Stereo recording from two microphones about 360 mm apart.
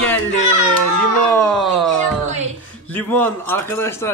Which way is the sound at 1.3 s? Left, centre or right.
Centre.